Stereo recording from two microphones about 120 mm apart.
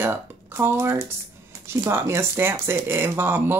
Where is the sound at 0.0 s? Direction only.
20° right (ahead or behind).